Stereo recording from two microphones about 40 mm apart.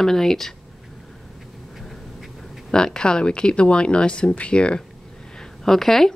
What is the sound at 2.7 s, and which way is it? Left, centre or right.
Speech, left.